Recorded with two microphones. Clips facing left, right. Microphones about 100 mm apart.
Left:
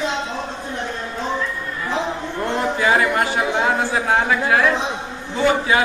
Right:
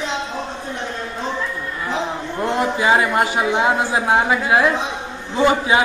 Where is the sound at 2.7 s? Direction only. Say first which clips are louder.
Right 1 dB; 20° right (ahead or behind).